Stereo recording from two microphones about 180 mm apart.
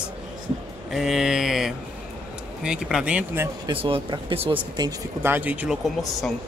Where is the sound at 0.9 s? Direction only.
Centre (ahead or behind).